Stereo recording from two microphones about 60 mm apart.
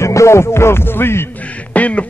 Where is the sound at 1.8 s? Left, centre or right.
Left.